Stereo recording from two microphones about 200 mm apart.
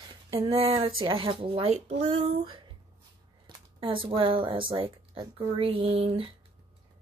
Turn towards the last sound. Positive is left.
turn(degrees=-30)  # may be behind; listen again after turning